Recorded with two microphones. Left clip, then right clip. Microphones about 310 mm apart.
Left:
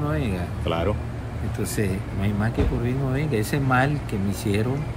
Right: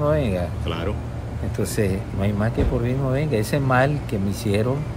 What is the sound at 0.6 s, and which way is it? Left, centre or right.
Speech, centre.